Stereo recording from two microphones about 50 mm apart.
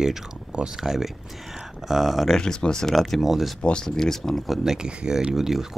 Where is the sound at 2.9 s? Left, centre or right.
Centre.